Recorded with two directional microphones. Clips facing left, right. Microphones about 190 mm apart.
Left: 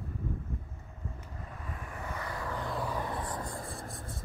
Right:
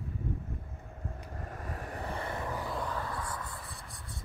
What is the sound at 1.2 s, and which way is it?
Vehicle, 45° right (ahead or behind).